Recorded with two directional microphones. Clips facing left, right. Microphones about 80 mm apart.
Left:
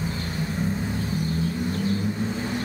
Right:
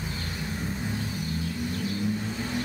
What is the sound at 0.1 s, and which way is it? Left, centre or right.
Vehicle, left.